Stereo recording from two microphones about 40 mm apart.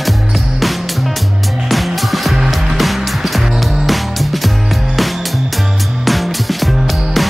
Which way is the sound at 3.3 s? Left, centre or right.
Centre.